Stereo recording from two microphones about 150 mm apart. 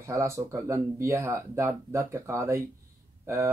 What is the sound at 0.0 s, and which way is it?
Speech, 20° right (ahead or behind).